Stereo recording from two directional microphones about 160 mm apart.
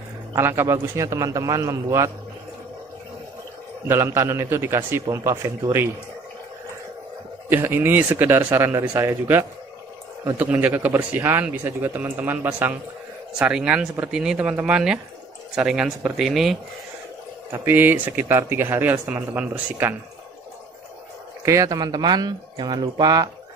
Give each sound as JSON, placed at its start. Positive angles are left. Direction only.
{"t": 0.3, "sound": "speech", "side_deg": -15}
{"t": 3.8, "sound": "speech", "side_deg": -15}
{"t": 7.4, "sound": "speech", "side_deg": -15}
{"t": 17.5, "sound": "speech", "side_deg": -10}
{"t": 21.5, "sound": "speech", "side_deg": -20}